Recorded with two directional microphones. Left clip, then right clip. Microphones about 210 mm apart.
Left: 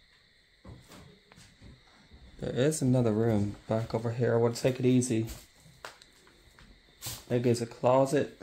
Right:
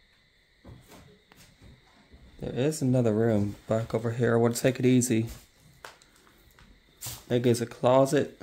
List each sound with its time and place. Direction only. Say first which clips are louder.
2.4 s speech: even; centre (ahead or behind); by 5.2 s 30° right (ahead or behind)
7.2 s speech: right 3 dB; 25° right (ahead or behind)